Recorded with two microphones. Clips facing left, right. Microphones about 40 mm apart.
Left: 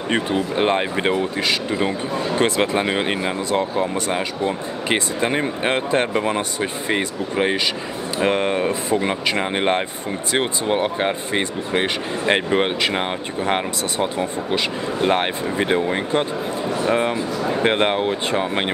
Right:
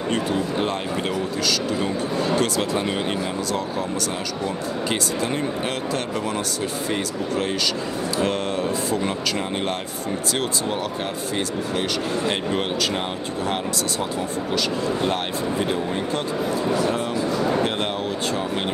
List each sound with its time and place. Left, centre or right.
0.1 s speech: left